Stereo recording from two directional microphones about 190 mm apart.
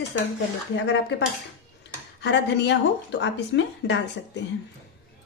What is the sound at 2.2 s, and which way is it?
Speech, 65° left (ahead or behind).